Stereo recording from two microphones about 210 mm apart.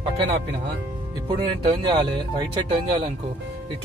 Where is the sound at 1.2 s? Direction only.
25° right (ahead or behind).